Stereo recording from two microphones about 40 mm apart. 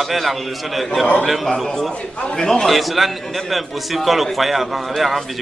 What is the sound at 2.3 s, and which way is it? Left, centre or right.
Speech, centre.